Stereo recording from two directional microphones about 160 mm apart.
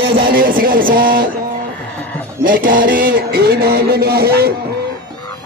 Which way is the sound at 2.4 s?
60° right (ahead or behind).